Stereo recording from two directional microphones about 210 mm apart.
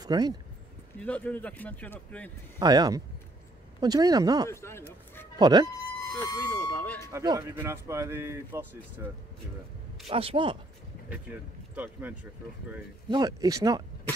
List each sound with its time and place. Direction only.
0.0 s speech: 20° right (ahead or behind)
0.9 s speech: 5° left (ahead or behind)
2.6 s a man's voice: 20° right (ahead or behind)
4.5 s speech: 10° left (ahead or behind)
5.4 s a man's voice: 20° right (ahead or behind)
6.1 s speech: 20° left (ahead or behind)
7.1 s speech: 15° right (ahead or behind)
10.0 s a man's voice: 25° right (ahead or behind)
11.7 s speech: 5° right (ahead or behind)